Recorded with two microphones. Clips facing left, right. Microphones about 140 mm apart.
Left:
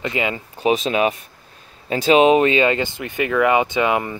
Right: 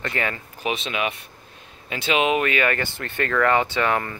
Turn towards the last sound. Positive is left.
turn(degrees=15)  # may be behind; listen again after turning